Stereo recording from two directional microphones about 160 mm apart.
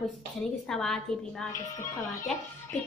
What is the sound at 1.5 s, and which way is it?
Speech, 20° left (ahead or behind).